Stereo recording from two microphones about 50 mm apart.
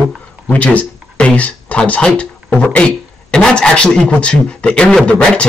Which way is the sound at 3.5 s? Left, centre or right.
Centre.